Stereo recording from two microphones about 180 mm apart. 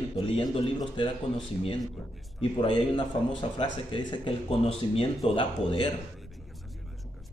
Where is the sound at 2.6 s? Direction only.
25° left (ahead or behind).